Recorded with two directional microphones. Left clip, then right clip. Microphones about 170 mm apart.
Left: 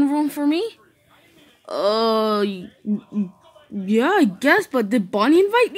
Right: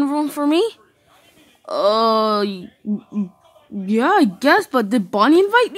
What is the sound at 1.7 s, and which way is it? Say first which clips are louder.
Speech: right 3 dB; 15° right (ahead or behind).